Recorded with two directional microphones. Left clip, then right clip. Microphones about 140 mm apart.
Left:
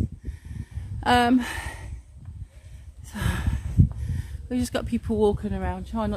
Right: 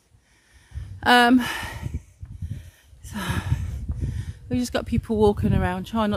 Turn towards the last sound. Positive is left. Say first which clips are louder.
# right 5 dB
turn(degrees=-65)  # may be behind; listen again after turning